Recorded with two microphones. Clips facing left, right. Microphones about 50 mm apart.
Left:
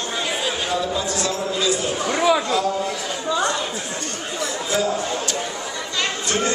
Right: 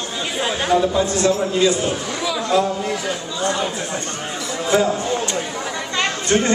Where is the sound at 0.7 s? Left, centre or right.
Right.